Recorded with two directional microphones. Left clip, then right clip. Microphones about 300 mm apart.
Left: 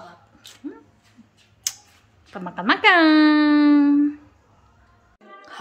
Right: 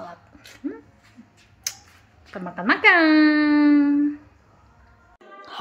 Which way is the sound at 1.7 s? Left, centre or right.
Centre.